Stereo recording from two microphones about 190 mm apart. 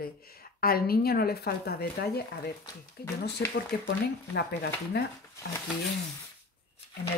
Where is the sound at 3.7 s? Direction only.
55° left (ahead or behind).